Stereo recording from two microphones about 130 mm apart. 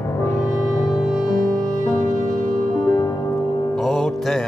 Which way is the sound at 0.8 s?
Centre (ahead or behind).